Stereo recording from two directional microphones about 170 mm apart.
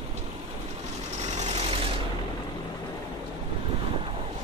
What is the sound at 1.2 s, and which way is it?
Sewing machine, 40° right (ahead or behind).